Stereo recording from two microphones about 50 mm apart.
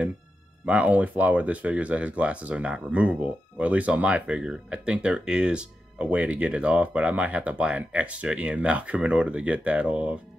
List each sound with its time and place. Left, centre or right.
0.7 s speech: right